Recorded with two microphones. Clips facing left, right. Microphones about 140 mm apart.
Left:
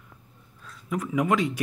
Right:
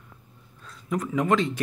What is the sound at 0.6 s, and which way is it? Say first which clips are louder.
Speech: right 2 dB; 5° left (ahead or behind).